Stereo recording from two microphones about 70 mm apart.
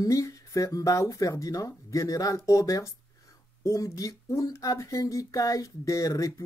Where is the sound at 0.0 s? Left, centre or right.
Left.